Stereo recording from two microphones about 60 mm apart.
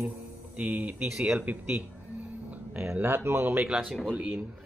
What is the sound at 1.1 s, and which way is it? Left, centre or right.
Speech, centre.